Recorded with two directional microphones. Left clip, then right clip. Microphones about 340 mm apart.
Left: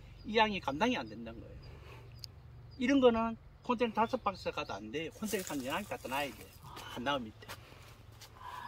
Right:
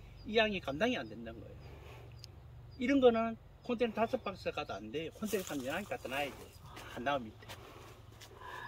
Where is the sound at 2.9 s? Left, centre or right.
Centre.